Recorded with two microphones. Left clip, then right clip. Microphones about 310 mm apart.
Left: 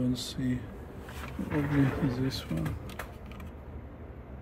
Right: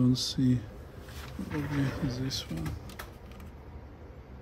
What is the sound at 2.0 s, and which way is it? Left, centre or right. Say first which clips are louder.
Speech: left 2 dB; centre.